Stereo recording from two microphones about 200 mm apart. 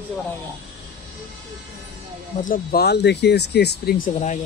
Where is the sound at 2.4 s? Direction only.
45° left (ahead or behind).